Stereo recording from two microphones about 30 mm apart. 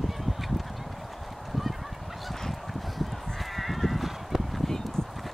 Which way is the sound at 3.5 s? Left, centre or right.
Centre.